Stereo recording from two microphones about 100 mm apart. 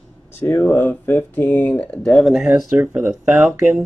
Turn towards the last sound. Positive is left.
turn(degrees=-20)  # may be behind; listen again after turning